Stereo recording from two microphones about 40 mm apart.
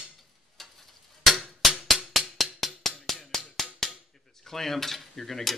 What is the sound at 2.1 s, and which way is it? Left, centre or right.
Music, centre.